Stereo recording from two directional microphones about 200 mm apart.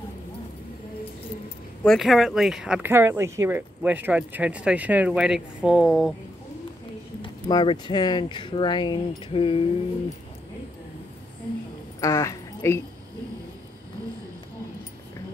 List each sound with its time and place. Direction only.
1.9 s speech: centre (ahead or behind)
7.2 s speech: 25° left (ahead or behind)
12.0 s speech: 15° left (ahead or behind)